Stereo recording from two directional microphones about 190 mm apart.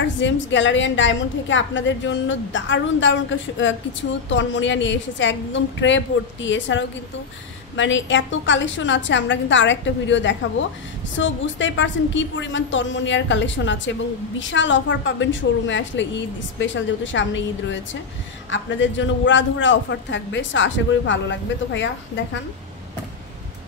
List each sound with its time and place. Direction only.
0.2 s a man's voice: 75° left (ahead or behind)